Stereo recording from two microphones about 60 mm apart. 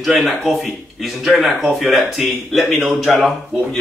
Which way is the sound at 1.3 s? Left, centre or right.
Centre.